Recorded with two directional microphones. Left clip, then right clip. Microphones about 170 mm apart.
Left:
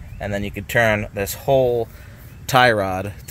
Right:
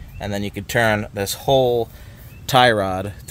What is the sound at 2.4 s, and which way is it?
Speech, 15° right (ahead or behind).